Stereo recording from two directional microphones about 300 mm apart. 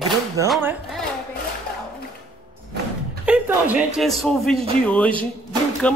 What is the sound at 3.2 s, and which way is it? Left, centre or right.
A man's voice, centre.